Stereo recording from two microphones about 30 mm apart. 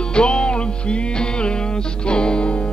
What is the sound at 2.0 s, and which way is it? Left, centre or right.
Music, left.